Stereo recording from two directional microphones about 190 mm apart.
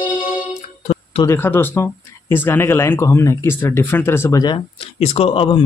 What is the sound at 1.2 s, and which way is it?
Speech, 15° left (ahead or behind).